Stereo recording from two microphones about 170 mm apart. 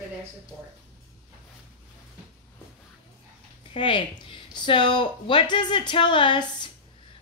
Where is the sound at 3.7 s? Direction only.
30° left (ahead or behind).